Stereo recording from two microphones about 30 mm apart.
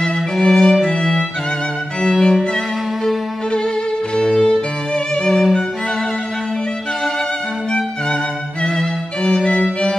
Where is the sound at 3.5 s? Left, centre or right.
Left.